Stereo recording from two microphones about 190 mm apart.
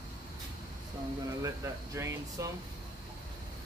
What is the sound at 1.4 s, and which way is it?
Speech, 15° right (ahead or behind).